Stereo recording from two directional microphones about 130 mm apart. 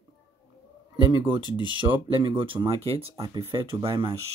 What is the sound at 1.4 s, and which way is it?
Speech, 35° left (ahead or behind).